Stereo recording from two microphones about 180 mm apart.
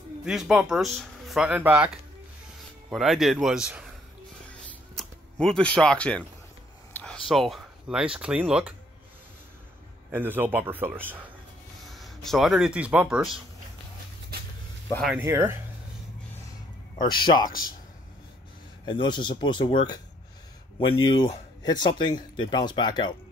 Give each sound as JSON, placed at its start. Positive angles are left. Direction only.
{"t": 0.2, "sound": "speech", "side_deg": -5}
{"t": 2.9, "sound": "speech", "side_deg": 0}
{"t": 4.9, "sound": "speech", "side_deg": 5}
{"t": 10.1, "sound": "speech", "side_deg": -10}
{"t": 11.9, "sound": "speech", "side_deg": 0}
{"t": 15.1, "sound": "speech", "side_deg": -15}
{"t": 17.0, "sound": "speech", "side_deg": 25}
{"t": 18.9, "sound": "speech", "side_deg": 25}